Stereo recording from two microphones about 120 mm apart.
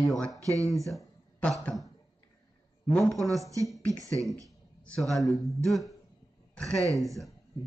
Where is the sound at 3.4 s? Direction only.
25° right (ahead or behind).